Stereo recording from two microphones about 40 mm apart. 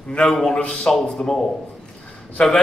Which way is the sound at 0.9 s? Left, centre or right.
Left.